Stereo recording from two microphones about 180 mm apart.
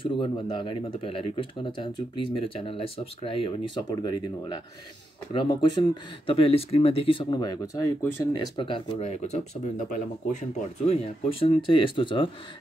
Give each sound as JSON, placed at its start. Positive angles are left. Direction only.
{"t": 0.0, "sound": "speech", "side_deg": 30}
{"t": 10.9, "sound": "speech", "side_deg": 30}